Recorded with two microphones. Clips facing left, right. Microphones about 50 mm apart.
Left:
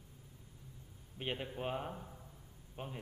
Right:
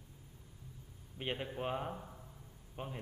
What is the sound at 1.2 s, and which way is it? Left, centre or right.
A man's voice, centre.